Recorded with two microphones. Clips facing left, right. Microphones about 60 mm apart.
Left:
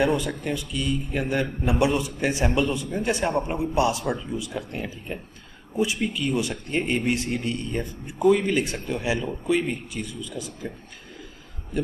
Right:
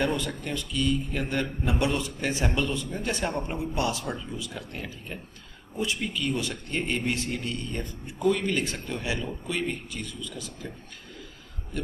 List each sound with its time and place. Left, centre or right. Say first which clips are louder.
0.0 s speech: left 5 dB; centre